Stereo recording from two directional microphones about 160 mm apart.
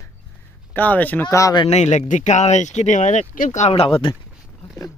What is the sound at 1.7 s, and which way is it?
Speech, 45° left (ahead or behind).